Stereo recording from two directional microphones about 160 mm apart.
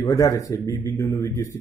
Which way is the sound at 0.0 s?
20° left (ahead or behind).